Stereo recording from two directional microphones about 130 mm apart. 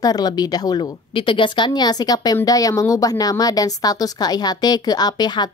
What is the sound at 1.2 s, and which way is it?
A woman's voice, 40° left (ahead or behind).